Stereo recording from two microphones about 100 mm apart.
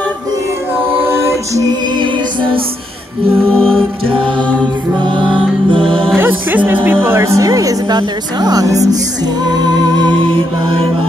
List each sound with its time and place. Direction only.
1.0 s music: 30° right (ahead or behind)
3.4 s music: 10° left (ahead or behind)
5.7 s music: 60° right (ahead or behind)
6.1 s a woman's voice: 15° right (ahead or behind); by 8.9 s 35° right (ahead or behind)
9.4 s music: 45° right (ahead or behind); by 10.9 s 60° right (ahead or behind)